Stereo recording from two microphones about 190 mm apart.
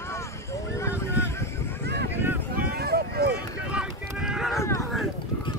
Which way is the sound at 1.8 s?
60° right (ahead or behind).